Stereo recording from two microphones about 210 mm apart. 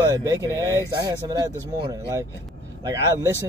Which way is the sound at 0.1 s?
20° right (ahead or behind).